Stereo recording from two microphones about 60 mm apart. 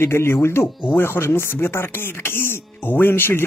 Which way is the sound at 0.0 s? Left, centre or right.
Left.